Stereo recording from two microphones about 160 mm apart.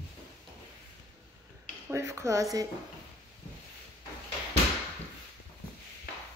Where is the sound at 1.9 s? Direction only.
15° right (ahead or behind).